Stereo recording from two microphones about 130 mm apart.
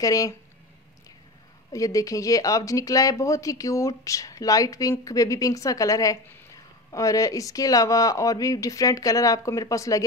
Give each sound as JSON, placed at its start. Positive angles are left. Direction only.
{"t": 0.0, "sound": "speech", "side_deg": 25}
{"t": 1.7, "sound": "speech", "side_deg": 25}